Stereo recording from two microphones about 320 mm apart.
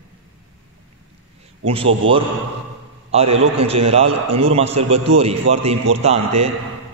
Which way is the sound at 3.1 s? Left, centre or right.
Centre.